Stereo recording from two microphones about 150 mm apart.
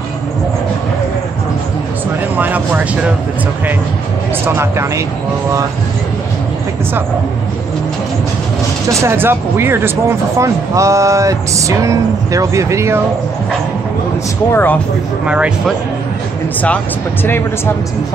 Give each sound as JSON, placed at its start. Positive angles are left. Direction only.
{"t": 2.3, "sound": "vehicle", "side_deg": -10}
{"t": 4.6, "sound": "speech", "side_deg": -20}
{"t": 9.0, "sound": "speech", "side_deg": -15}
{"t": 14.5, "sound": "speech", "side_deg": 15}
{"t": 15.2, "sound": "speech", "side_deg": -5}
{"t": 16.6, "sound": "speech", "side_deg": 10}